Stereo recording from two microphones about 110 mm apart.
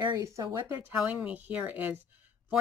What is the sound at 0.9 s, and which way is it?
Speech, 10° right (ahead or behind).